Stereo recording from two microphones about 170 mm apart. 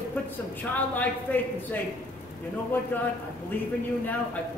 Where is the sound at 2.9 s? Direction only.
10° left (ahead or behind).